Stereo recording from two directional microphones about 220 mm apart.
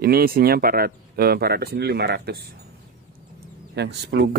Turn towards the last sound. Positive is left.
turn(degrees=-50)  # may be behind; listen again after turning